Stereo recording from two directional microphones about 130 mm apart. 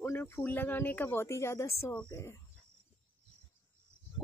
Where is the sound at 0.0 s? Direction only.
20° left (ahead or behind).